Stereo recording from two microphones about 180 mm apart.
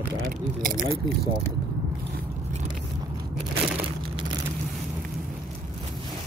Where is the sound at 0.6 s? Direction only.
50° right (ahead or behind).